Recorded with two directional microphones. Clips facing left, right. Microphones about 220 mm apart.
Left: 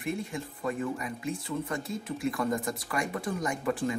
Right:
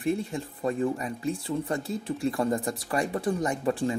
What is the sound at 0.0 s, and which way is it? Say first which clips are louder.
Speech: right 5 dB; 35° right (ahead or behind).